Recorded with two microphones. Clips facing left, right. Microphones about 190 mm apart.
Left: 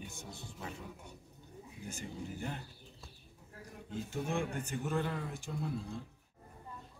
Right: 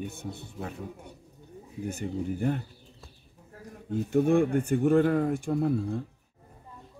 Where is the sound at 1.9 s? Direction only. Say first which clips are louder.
Right 12 dB; 60° right (ahead or behind).